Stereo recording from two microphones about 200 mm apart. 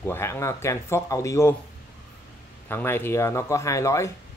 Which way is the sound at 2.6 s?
10° left (ahead or behind).